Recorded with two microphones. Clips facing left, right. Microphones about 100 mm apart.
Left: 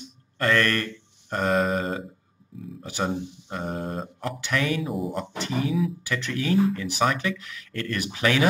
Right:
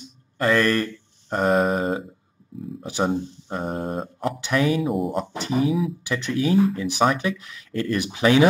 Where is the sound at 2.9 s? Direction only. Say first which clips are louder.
Right 4 dB; 20° right (ahead or behind).